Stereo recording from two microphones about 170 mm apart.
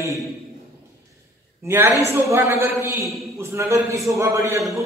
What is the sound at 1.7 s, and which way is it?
A man's voice, 15° right (ahead or behind).